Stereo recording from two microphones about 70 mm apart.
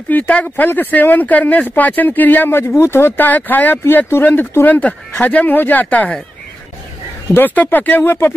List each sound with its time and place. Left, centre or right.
0.1 s speech: left
2.7 s speech: left
7.3 s speech: left